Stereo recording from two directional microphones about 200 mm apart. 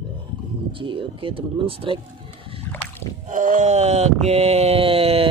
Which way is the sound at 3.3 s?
40° right (ahead or behind).